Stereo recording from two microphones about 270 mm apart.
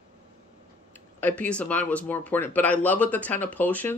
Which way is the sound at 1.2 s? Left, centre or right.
Centre.